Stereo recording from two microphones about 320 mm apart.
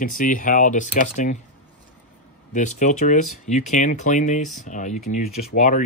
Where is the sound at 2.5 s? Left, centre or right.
Left.